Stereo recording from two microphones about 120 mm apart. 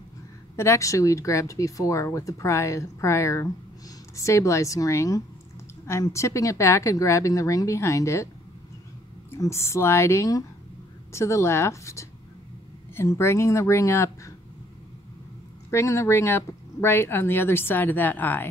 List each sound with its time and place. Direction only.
0.6 s speech: 25° left (ahead or behind)
9.4 s speech: 25° left (ahead or behind)
15.7 s speech: 25° left (ahead or behind)